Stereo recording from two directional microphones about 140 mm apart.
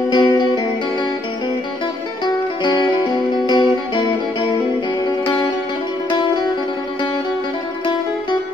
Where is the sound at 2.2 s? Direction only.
30° left (ahead or behind).